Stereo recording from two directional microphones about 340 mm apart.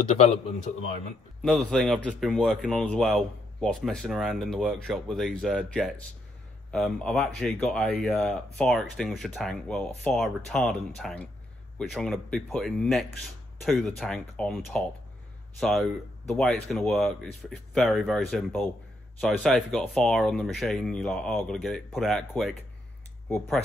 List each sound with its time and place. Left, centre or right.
0.1 s speech: centre
1.4 s speech: centre